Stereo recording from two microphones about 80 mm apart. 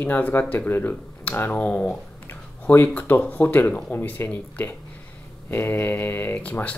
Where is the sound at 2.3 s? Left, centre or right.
Left.